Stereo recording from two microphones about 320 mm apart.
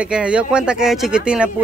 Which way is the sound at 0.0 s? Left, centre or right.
Centre.